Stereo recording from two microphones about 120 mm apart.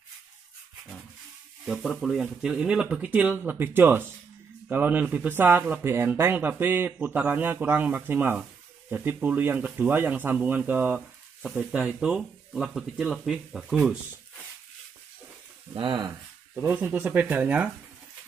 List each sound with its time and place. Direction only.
1.7 s speech: centre (ahead or behind)
11.0 s frying: centre (ahead or behind)
11.7 s speech: 5° right (ahead or behind)
15.7 s speech: 45° right (ahead or behind)
16.6 s speech: 15° right (ahead or behind)